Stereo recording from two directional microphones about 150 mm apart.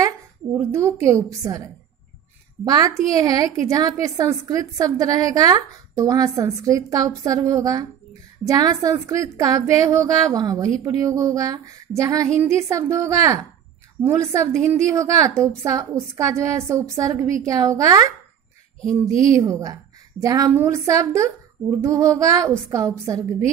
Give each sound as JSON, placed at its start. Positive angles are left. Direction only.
{"t": 0.5, "sound": "a woman's voice", "side_deg": -15}
{"t": 2.6, "sound": "a woman's voice", "side_deg": -25}